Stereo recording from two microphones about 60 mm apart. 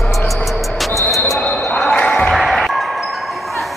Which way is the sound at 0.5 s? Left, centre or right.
Centre.